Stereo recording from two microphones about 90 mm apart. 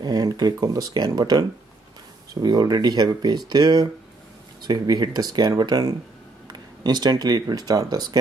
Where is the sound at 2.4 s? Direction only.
50° right (ahead or behind).